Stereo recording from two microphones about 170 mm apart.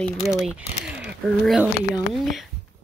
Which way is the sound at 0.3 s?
5° right (ahead or behind).